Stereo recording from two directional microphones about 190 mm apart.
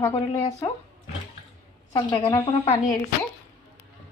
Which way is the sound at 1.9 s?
25° left (ahead or behind).